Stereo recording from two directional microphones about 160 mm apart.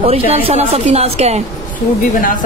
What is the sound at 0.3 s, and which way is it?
A woman's voice, 40° right (ahead or behind).